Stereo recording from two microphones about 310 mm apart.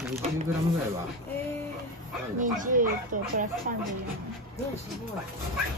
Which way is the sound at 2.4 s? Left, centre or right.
Right.